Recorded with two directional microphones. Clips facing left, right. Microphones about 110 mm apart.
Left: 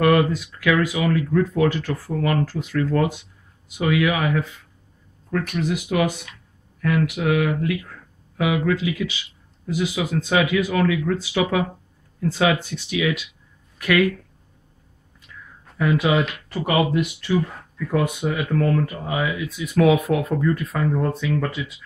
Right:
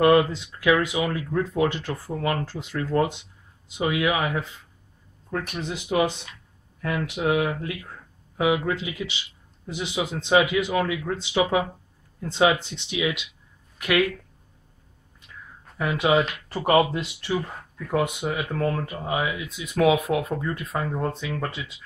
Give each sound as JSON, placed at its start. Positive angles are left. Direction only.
{"t": 0.0, "sound": "speech", "side_deg": -25}
{"t": 15.9, "sound": "speech", "side_deg": -25}